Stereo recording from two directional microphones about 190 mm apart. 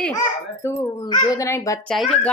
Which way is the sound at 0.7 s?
15° left (ahead or behind).